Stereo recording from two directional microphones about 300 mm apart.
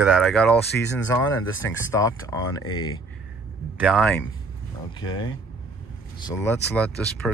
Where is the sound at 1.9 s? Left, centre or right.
Centre.